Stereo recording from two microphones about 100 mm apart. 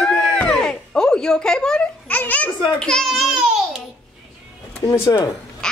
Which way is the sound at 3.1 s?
5° right (ahead or behind).